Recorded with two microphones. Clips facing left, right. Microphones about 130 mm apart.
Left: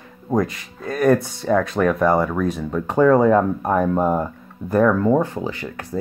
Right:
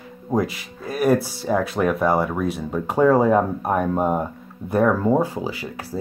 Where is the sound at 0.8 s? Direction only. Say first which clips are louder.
Left 2 dB; 5° right (ahead or behind).